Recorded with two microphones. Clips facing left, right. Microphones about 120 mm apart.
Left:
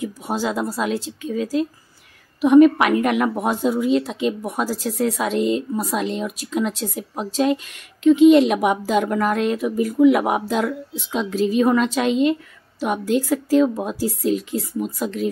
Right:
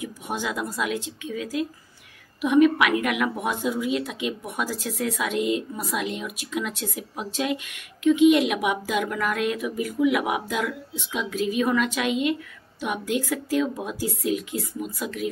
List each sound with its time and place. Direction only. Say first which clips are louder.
0.0 s a woman's voice: left 6 dB; 35° left (ahead or behind)